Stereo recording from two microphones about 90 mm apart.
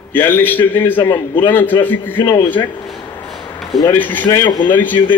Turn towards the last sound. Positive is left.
turn(degrees=20)  # may be behind; listen again after turning